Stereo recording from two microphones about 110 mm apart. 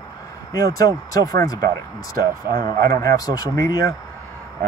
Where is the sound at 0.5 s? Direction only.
30° left (ahead or behind).